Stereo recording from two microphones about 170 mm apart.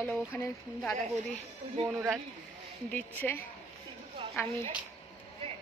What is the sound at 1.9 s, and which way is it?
Speech, 10° right (ahead or behind).